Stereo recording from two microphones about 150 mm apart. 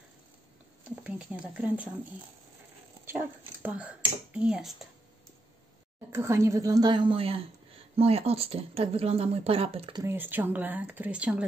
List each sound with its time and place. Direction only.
0.8 s speech: 10° right (ahead or behind)
3.1 s speech: 15° right (ahead or behind)
6.1 s a woman's voice: 20° right (ahead or behind); by 9.9 s 40° right (ahead or behind)
10.0 s speech: 15° right (ahead or behind)